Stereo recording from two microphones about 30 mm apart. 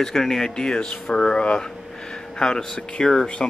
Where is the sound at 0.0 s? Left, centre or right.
Centre.